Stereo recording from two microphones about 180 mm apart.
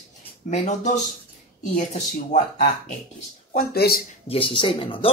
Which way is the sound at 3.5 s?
55° left (ahead or behind).